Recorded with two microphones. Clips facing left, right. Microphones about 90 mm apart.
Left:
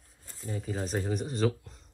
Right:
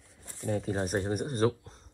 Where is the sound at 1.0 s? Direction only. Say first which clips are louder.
Right 1 dB; 45° right (ahead or behind).